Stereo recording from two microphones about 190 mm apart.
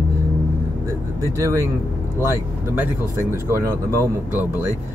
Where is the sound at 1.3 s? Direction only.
15° right (ahead or behind).